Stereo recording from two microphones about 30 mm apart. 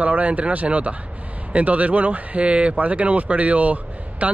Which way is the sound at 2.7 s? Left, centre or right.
Right.